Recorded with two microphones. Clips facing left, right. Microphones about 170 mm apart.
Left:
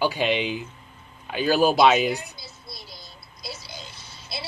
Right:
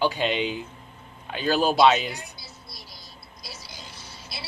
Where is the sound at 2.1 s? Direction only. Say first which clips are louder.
Left 8 dB; 25° left (ahead or behind).